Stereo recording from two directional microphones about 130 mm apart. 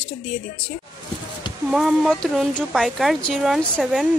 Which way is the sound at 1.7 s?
Centre (ahead or behind).